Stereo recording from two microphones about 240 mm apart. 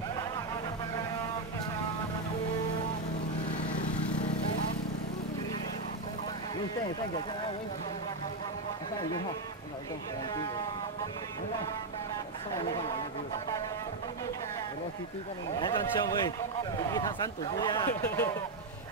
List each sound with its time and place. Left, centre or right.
15.5 s speech: centre